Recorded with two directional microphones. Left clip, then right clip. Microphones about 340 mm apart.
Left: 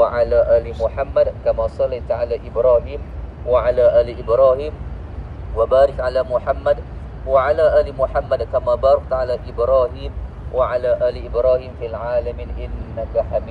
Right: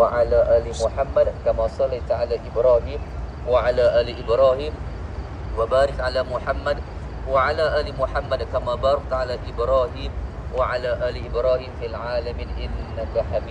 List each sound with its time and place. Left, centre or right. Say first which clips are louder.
0.1 s speech: left 3 dB; left